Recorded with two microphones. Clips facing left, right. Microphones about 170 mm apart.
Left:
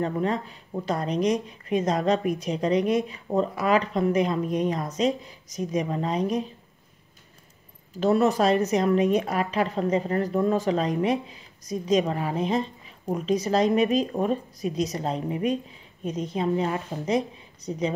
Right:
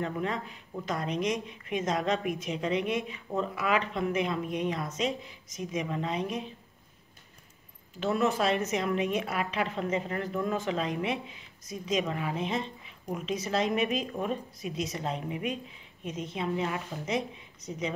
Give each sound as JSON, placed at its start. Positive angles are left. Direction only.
{"t": 0.0, "sound": "a woman's voice", "side_deg": 35}
{"t": 8.0, "sound": "a woman's voice", "side_deg": 40}